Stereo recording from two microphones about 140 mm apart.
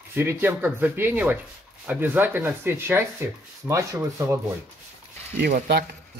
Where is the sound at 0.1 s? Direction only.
15° right (ahead or behind).